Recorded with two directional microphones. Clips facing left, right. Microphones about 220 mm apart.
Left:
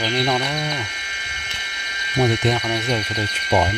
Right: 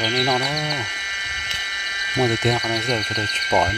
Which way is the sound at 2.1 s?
Centre (ahead or behind).